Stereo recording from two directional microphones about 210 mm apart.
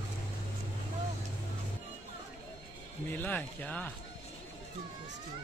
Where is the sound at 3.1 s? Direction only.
10° left (ahead or behind).